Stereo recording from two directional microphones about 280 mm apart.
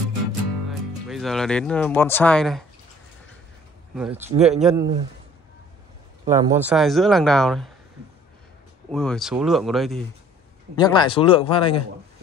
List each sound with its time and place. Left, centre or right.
0.7 s speech: centre
3.9 s speech: centre
6.2 s speech: centre
8.9 s speech: centre
10.8 s speech: centre